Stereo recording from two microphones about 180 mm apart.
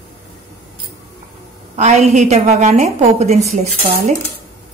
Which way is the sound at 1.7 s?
40° right (ahead or behind).